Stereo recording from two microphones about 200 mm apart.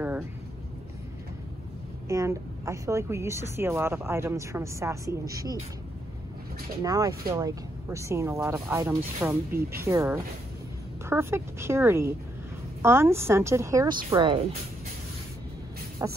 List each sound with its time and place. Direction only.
2.0 s a woman's voice: 15° right (ahead or behind)
6.8 s a woman's voice: 20° right (ahead or behind)
16.0 s a woman's voice: 15° right (ahead or behind)